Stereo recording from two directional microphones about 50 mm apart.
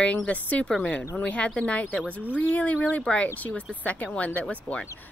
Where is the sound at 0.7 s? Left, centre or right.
Centre.